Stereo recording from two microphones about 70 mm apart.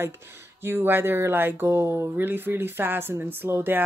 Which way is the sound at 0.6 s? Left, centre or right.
Right.